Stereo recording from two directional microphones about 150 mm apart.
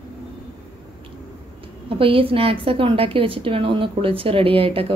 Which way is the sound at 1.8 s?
35° right (ahead or behind).